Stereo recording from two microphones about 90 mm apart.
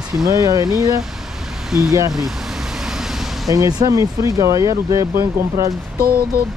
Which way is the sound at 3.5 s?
40° right (ahead or behind).